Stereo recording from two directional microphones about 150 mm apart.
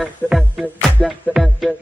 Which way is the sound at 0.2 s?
5° right (ahead or behind).